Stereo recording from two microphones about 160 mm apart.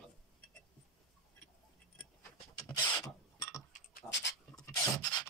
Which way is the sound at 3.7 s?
80° left.